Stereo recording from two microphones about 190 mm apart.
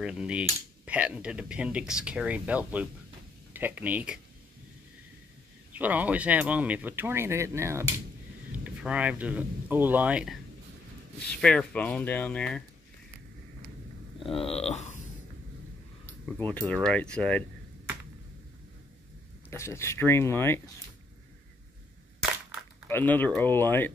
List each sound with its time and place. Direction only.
0.0 s speech: 5° right (ahead or behind)
5.7 s speech: 10° right (ahead or behind)
11.4 s speech: 5° left (ahead or behind)
14.2 s speech: 30° left (ahead or behind)
16.3 s speech: 5° left (ahead or behind)
19.5 s speech: 15° left (ahead or behind)
22.8 s speech: 10° left (ahead or behind)